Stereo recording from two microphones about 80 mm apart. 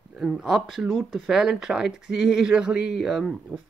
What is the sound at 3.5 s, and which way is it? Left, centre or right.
Speech, centre.